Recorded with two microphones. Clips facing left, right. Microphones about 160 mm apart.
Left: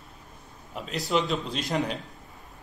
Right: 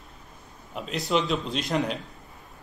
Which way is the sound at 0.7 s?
Centre (ahead or behind).